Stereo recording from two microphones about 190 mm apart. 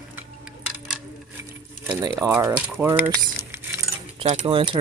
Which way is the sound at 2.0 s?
15° right (ahead or behind).